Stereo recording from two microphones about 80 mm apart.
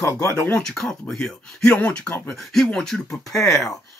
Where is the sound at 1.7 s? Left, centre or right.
Centre.